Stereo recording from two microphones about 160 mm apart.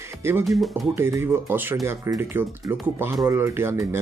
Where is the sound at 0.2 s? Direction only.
15° right (ahead or behind).